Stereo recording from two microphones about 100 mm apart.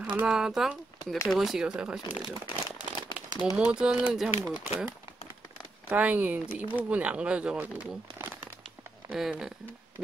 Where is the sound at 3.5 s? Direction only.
10° right (ahead or behind).